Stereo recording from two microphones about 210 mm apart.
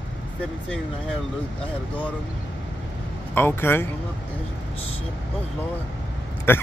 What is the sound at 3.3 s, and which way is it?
Speech, 10° left (ahead or behind).